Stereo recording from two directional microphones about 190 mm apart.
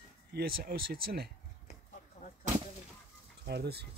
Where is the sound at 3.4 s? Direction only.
60° right (ahead or behind).